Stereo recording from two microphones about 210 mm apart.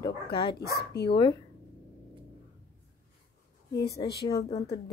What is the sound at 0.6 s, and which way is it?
Speech, 50° left (ahead or behind).